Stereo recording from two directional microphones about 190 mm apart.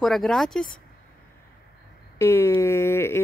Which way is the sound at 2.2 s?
15° left (ahead or behind).